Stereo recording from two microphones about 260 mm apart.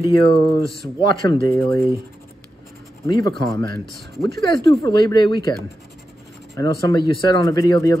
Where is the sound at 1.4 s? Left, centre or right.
Centre.